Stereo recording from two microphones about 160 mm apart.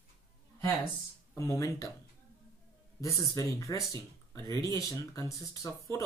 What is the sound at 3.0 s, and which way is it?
Speech, 20° left (ahead or behind).